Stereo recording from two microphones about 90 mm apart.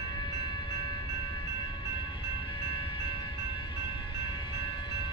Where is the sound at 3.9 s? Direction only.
65° left (ahead or behind).